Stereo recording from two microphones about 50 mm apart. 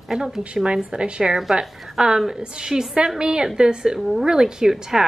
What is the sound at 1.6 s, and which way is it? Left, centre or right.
Speech, centre.